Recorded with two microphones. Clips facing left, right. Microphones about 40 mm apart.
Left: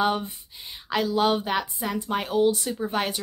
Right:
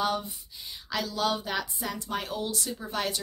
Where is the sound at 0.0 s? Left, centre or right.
Left.